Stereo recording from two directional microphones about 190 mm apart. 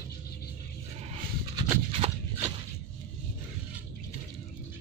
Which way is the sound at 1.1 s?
25° right (ahead or behind).